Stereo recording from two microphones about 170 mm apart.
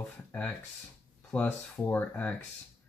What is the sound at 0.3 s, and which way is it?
Speech, 10° left (ahead or behind).